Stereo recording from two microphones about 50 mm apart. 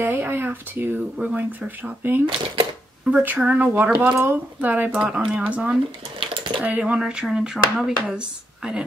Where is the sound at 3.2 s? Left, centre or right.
Right.